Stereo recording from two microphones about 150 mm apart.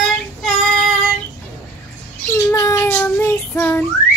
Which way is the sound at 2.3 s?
20° left (ahead or behind).